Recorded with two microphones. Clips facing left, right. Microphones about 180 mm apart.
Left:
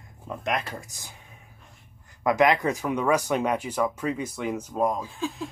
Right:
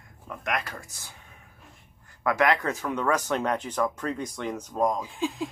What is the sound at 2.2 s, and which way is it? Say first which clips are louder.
Speech: left 3 dB; 15° left (ahead or behind).